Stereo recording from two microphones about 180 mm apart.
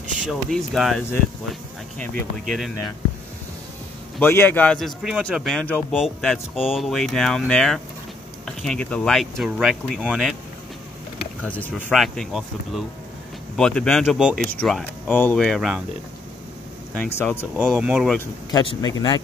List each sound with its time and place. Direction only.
0.3 s speech: centre (ahead or behind)
4.2 s speech: 10° left (ahead or behind)
11.4 s speech: 10° left (ahead or behind)
16.9 s speech: 10° left (ahead or behind)
17.6 s speech: 5° right (ahead or behind)
18.5 s speech: 20° left (ahead or behind)